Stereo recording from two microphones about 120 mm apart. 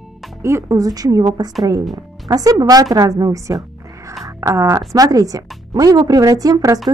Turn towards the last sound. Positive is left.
turn(degrees=-30)  # may be behind; listen again after turning